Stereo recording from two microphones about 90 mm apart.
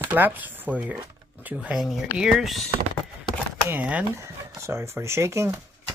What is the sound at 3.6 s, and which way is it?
Speech, 15° right (ahead or behind).